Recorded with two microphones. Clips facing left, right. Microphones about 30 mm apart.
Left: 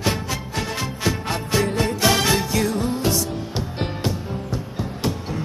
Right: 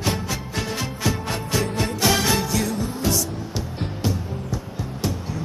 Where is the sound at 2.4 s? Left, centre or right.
Centre.